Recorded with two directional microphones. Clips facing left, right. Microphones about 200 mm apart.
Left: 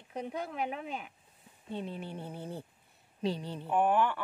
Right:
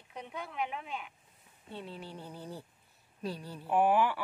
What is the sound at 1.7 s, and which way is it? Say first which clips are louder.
Speech: left 5 dB; 20° left (ahead or behind).